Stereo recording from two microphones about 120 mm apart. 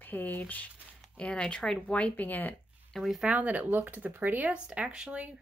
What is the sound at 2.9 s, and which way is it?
Speech, centre (ahead or behind).